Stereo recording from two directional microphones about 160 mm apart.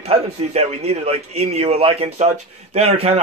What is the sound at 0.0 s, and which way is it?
A man's voice, 40° right (ahead or behind).